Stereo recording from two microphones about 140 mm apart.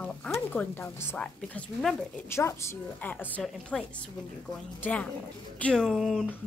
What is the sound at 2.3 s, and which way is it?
A woman's voice, 20° left (ahead or behind).